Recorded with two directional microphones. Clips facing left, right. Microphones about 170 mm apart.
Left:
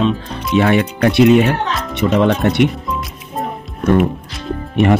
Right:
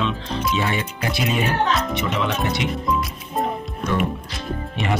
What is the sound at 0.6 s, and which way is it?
Speech, 65° left (ahead or behind).